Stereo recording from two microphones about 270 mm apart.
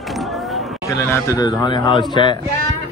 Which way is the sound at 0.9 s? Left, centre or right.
Centre.